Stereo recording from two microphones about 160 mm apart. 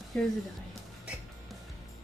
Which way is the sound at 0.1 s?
5° left (ahead or behind).